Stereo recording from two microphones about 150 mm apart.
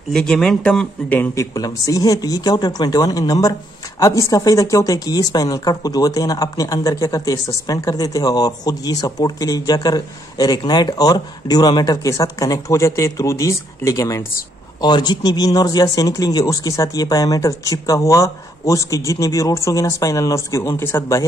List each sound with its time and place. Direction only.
0.1 s speech: 5° left (ahead or behind); by 21.3 s 20° left (ahead or behind)